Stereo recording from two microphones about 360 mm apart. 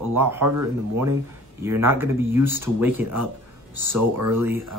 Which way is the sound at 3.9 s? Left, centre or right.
Right.